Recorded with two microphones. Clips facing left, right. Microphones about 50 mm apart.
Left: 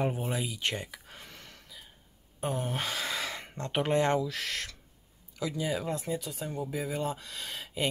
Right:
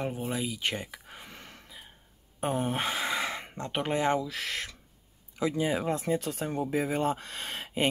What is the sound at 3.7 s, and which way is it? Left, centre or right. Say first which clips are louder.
Speech: left 1 dB; centre.